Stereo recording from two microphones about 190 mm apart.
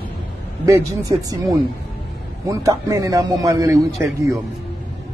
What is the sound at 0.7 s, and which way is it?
A man's voice, 15° right (ahead or behind).